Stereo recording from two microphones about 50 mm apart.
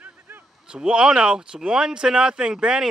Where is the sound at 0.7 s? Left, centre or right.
Centre.